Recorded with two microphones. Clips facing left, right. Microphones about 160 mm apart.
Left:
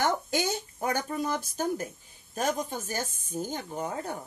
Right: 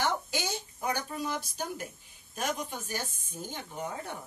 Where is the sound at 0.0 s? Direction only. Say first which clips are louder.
Left 4 dB; 50° left (ahead or behind).